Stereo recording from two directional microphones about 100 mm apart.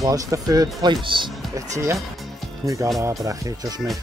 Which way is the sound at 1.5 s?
30° right (ahead or behind).